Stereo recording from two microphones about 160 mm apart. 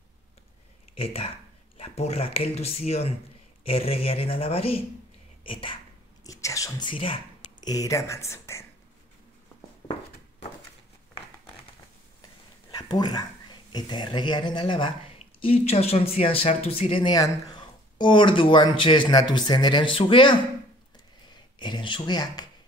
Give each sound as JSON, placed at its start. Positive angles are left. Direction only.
{"t": 0.9, "sound": "speech", "side_deg": 35}
{"t": 6.2, "sound": "speech", "side_deg": 20}
{"t": 7.6, "sound": "speech", "side_deg": 20}
{"t": 12.7, "sound": "a sound", "side_deg": 25}
{"t": 13.7, "sound": "speech", "side_deg": 25}
{"t": 21.5, "sound": "speech", "side_deg": 30}